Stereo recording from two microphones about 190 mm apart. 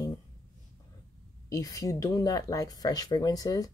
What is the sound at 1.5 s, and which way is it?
Speech, 20° left (ahead or behind).